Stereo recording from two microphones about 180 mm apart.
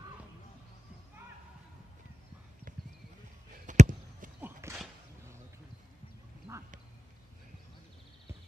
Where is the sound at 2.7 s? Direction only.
45° right (ahead or behind).